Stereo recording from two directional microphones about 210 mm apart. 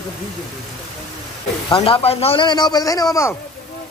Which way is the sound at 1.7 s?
25° left (ahead or behind).